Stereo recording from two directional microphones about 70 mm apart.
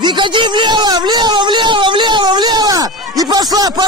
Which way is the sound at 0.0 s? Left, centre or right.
Right.